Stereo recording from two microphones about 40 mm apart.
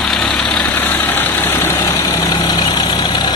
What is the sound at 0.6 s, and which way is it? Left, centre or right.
Vehicle, left.